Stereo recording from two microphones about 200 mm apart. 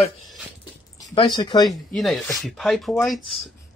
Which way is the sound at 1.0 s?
20° left (ahead or behind).